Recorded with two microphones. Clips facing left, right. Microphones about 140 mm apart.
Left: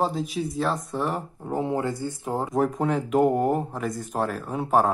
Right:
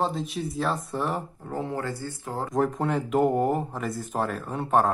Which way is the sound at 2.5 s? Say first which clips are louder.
Even; centre (ahead or behind).